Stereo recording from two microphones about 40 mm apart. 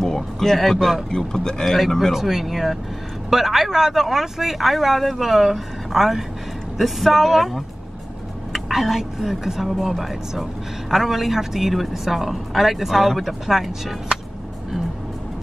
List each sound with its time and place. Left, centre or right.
0.1 s speech: centre
1.1 s speech: centre
2.1 s speech: centre